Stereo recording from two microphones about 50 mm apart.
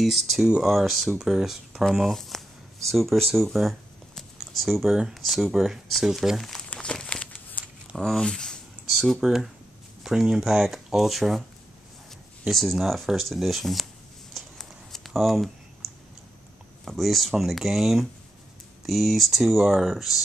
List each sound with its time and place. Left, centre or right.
0.0 s speech: centre
4.1 s typing: centre
5.2 s speech: centre
6.7 s crumpling: centre
7.6 s a sound: left
8.0 s speech: centre
8.9 s speech: centre
12.4 s speech: centre
14.3 s a sound: centre
16.8 s speech: centre